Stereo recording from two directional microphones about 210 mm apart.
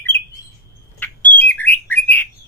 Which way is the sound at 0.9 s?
10° left (ahead or behind).